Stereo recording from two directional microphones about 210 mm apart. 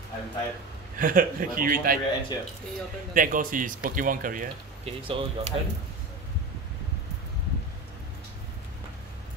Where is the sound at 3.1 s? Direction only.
40° right (ahead or behind).